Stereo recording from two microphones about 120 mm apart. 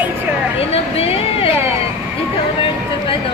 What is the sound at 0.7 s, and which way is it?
Speech, 55° left (ahead or behind).